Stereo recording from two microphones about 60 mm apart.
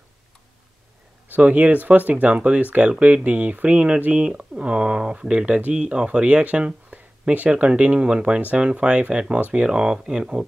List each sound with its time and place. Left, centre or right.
1.3 s speech: right